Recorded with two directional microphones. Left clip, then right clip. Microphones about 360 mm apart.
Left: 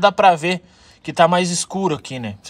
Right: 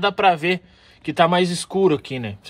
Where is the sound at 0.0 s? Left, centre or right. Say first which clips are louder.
Left 4 dB; centre.